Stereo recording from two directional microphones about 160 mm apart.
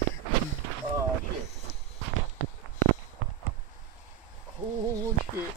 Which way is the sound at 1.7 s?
40° left (ahead or behind).